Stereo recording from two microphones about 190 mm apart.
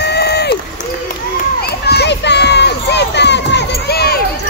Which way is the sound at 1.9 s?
60° left (ahead or behind).